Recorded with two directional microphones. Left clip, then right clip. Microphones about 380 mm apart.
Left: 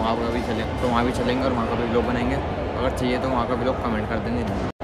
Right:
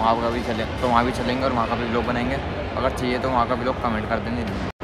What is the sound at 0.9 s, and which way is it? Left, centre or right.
Speech, centre.